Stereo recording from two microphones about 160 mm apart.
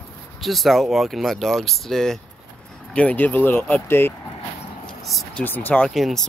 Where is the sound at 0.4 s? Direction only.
Centre (ahead or behind).